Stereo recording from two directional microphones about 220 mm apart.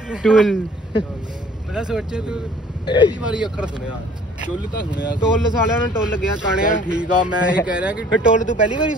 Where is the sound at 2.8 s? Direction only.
20° left (ahead or behind).